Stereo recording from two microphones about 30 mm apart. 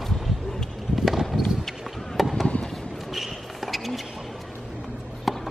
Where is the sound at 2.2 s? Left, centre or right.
Centre.